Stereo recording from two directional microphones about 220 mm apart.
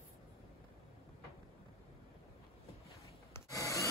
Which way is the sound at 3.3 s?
15° left (ahead or behind).